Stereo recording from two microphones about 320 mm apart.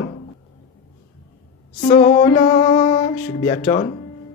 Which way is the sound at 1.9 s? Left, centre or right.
Centre.